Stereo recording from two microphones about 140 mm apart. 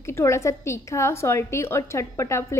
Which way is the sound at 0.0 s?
20° left (ahead or behind).